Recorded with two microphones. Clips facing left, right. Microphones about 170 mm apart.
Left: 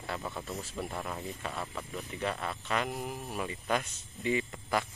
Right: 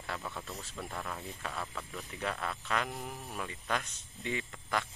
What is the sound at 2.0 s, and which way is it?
Speech, centre (ahead or behind).